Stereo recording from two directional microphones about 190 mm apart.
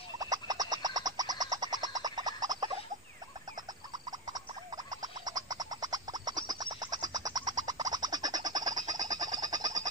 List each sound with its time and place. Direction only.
0.2 s frog: 20° right (ahead or behind)
5.0 s frog: 20° right (ahead or behind)